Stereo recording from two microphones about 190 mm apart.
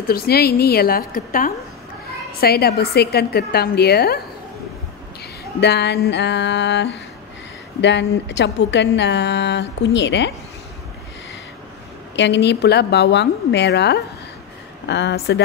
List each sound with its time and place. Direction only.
0.1 s a woman's voice: 55° left (ahead or behind)
5.6 s a woman's voice: 60° left (ahead or behind)
12.2 s a woman's voice: 65° left (ahead or behind)